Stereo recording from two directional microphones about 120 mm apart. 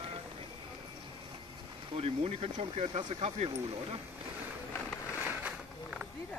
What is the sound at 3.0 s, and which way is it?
Speech, 50° right (ahead or behind).